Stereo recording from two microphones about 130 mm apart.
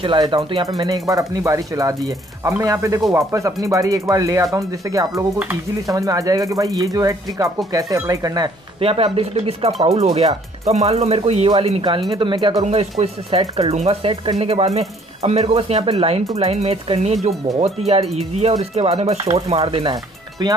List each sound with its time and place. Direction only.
0.0 s speech: 40° right (ahead or behind)
0.7 s speech: 30° right (ahead or behind)
8.8 s speech: 45° right (ahead or behind)
13.6 s speech: 55° right (ahead or behind)
16.3 s music: 55° right (ahead or behind)
17.6 s speech: 55° right (ahead or behind)
19.9 s speech: 30° right (ahead or behind)